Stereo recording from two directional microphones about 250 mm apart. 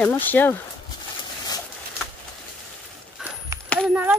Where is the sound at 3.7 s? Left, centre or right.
Centre.